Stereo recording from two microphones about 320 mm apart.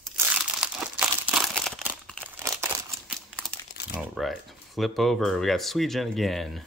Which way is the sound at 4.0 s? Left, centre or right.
Centre.